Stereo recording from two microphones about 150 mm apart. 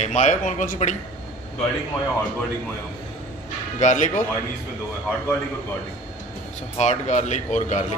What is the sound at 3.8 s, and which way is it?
Speech, 55° left (ahead or behind).